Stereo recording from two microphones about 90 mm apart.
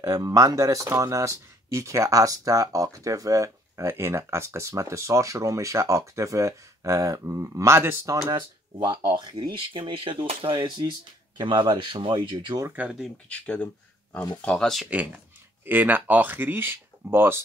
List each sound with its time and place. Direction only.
0.0 s speech: 40° right (ahead or behind)
8.3 s speech: 50° right (ahead or behind)
9.5 s speech: 75° right (ahead or behind)
12.8 s speech: 15° right (ahead or behind)
13.3 s speech: 15° left (ahead or behind)
14.9 s speech: 15° right (ahead or behind)